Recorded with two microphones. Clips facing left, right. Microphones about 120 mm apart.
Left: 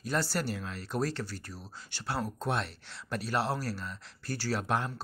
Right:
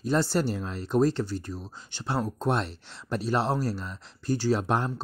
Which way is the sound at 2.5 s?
35° right (ahead or behind).